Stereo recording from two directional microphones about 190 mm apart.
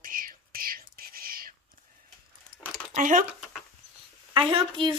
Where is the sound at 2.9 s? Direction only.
45° right (ahead or behind).